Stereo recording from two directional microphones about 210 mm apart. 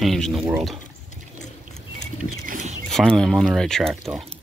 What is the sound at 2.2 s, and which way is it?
Rodents, 40° right (ahead or behind).